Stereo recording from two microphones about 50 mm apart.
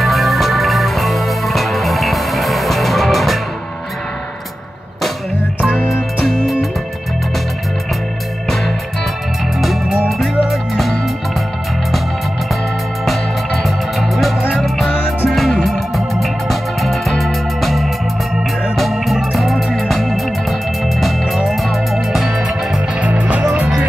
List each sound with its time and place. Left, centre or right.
0.0 s music: centre
6.2 s music: centre
9.6 s music: centre
13.0 s music: centre
22.9 s music: right